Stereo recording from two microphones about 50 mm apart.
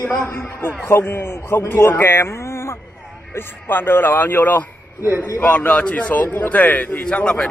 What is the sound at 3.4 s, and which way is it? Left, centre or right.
A man's voice, left.